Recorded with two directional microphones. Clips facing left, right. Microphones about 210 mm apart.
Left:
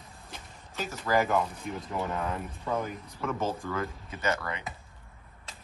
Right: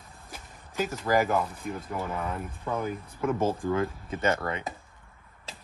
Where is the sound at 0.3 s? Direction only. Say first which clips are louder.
Right 1 dB; 10° right (ahead or behind).